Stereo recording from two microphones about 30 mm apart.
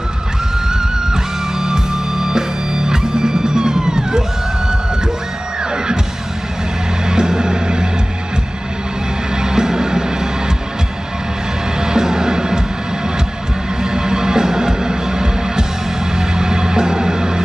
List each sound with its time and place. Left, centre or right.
0.7 s music: right
7.1 s music: right
9.4 s music: right
11.8 s music: right
13.8 s music: right